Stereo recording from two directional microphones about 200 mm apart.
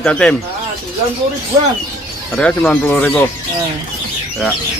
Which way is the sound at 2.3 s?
5° left (ahead or behind).